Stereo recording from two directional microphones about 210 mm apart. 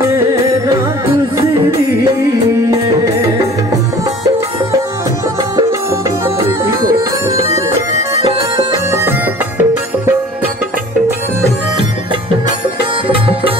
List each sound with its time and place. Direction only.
5.7 s music: 15° right (ahead or behind)
8.9 s music: 10° right (ahead or behind)
13.1 s music: 25° right (ahead or behind)